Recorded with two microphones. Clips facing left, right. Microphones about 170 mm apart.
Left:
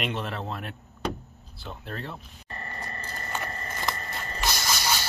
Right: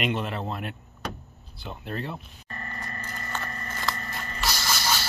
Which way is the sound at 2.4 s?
30° left (ahead or behind).